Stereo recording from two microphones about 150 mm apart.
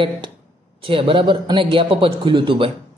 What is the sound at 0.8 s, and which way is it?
A man's voice, 35° right (ahead or behind).